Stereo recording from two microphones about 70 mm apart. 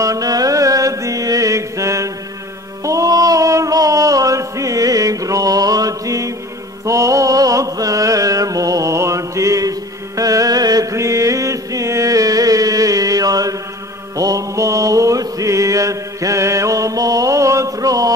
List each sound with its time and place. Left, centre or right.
0.0 s music: right
2.8 s a sound: right
14.1 s mantra: right